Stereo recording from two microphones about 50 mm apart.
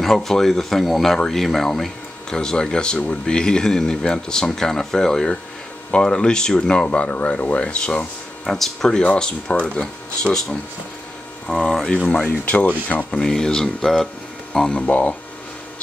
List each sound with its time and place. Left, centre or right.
0.0 s speech: centre
9.0 s speech: left
11.4 s speech: centre
12.3 s speech: left
13.1 s speech: centre
14.9 s speech: left